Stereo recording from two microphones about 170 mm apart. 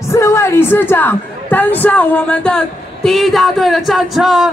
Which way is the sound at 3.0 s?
Centre (ahead or behind).